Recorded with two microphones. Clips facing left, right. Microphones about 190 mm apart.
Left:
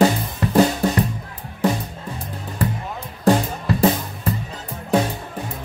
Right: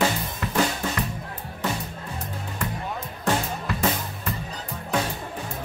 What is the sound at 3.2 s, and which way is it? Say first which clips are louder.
Music: left 8 dB; 35° left (ahead or behind).